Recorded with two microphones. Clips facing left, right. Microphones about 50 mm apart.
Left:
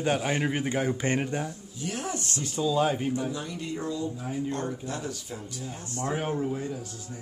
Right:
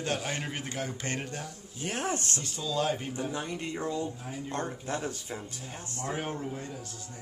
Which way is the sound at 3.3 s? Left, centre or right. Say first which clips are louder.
Left 1 dB; right.